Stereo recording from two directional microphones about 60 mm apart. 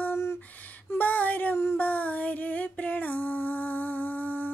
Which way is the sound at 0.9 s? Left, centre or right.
Left.